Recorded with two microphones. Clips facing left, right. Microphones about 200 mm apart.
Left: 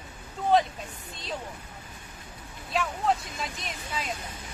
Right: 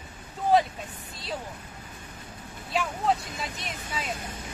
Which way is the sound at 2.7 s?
Centre (ahead or behind).